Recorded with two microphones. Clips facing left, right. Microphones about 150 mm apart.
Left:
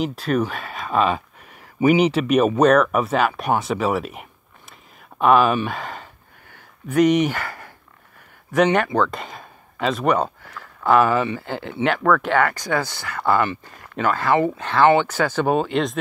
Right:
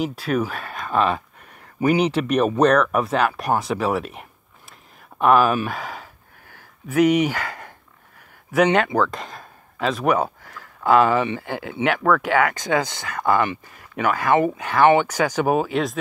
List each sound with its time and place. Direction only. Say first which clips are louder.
0.0 s speech: left 1 dB; 5° right (ahead or behind); by 8.9 s 20° right (ahead or behind)
8.9 s speech: even; centre (ahead or behind)